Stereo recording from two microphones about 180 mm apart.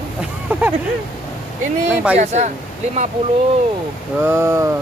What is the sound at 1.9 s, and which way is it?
Speech, 10° right (ahead or behind).